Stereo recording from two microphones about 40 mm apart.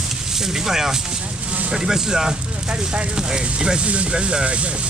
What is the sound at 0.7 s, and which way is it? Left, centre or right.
Speech, centre.